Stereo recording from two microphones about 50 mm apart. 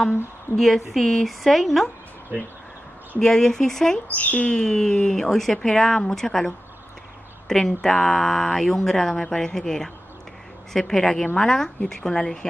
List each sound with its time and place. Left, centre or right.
0.6 s a woman's voice: centre
3.2 s speech: centre
4.1 s speech: left
4.6 s speech: centre